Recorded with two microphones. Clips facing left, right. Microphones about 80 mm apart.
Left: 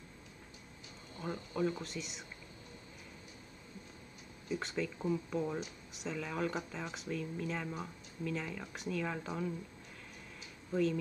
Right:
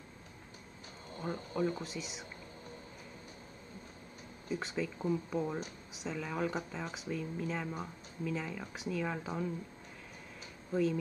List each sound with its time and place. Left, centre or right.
1.3 s a sound: centre
1.6 s speech: centre
4.5 s speech: centre
10.7 s speech: centre